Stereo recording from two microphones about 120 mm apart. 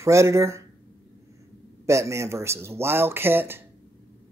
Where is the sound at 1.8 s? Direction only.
25° right (ahead or behind).